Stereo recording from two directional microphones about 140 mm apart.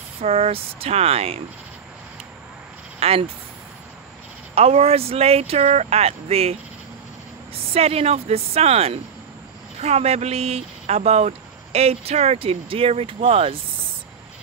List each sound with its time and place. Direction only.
0.2 s speech: 45° right (ahead or behind)
3.0 s a sound: 45° right (ahead or behind)
4.6 s speech: 45° right (ahead or behind)
7.7 s speech: 45° right (ahead or behind)